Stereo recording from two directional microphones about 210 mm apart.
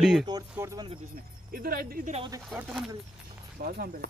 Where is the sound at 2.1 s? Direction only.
25° right (ahead or behind).